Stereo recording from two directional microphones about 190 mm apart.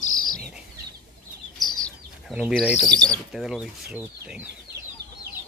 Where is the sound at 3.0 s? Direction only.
Centre (ahead or behind).